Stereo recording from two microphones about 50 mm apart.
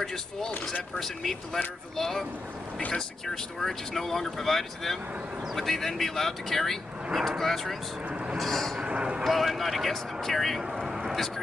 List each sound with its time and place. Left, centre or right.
0.0 s speech: centre
8.8 s speech: right
9.2 s speech: centre
10.9 s vehicle: centre